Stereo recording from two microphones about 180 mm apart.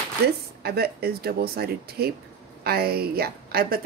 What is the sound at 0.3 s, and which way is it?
A woman's voice, 60° right (ahead or behind).